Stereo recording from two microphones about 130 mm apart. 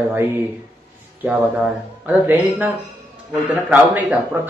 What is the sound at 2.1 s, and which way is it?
Speech, 10° right (ahead or behind).